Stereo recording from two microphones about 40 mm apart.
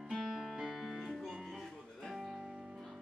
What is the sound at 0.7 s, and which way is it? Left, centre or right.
Music, centre.